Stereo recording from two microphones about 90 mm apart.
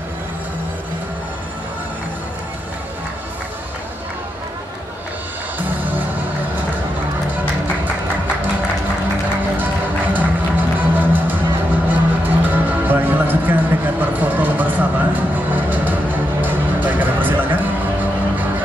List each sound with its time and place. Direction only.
5.6 s music: 20° right (ahead or behind)
10.1 s music: 20° right (ahead or behind)